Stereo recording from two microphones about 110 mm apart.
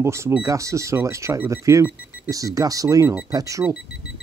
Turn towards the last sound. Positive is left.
turn(degrees=-30)  # may be behind; listen again after turning